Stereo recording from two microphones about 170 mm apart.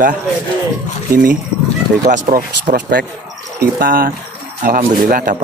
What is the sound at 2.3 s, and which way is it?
Speech, 55° right (ahead or behind).